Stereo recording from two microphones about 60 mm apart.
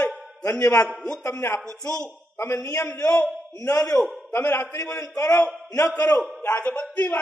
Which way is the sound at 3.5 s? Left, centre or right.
Left.